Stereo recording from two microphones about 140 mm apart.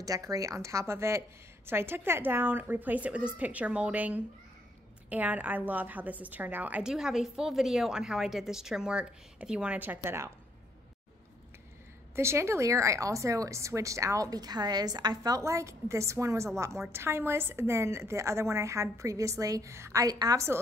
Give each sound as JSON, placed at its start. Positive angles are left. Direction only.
{"t": 0.0, "sound": "a woman's voice", "side_deg": -25}
{"t": 12.2, "sound": "a woman's voice", "side_deg": -20}